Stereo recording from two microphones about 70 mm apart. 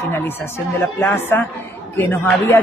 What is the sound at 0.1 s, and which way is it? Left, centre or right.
Speech, left.